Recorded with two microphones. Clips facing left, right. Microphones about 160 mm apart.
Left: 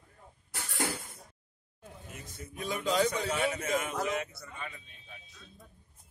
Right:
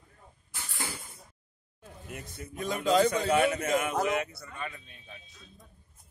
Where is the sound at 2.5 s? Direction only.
50° right (ahead or behind).